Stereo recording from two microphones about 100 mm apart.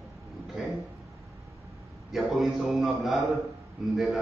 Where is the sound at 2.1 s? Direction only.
Centre (ahead or behind).